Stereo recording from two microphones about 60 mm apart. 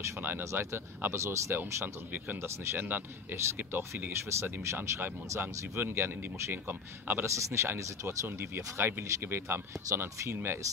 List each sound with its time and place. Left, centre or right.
0.4 s speech: right
2.9 s speech: right
4.3 s speech: right
7.2 s speech: right